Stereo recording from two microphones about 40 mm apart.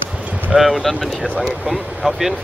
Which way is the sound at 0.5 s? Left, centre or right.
Centre.